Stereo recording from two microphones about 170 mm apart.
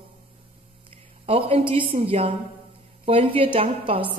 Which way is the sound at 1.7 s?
35° right (ahead or behind).